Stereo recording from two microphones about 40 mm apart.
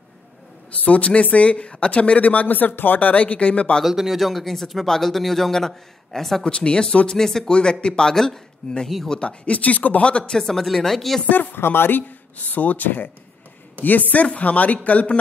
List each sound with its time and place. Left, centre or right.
0.7 s speech: left
3.8 s speech: centre
6.4 s speech: left
7.1 s speech: centre
9.2 s speech: left
10.0 s speech: left
10.3 s speech: centre
11.2 s speech: left
11.5 s speech: left
12.4 s speech: left
14.2 s speech: left